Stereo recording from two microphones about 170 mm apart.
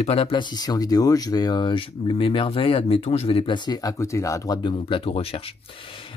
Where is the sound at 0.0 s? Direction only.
35° left (ahead or behind).